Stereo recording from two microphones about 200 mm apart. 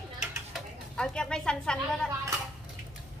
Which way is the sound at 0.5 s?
5° left (ahead or behind).